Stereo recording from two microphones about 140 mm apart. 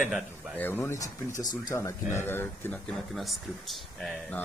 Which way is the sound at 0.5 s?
15° left (ahead or behind).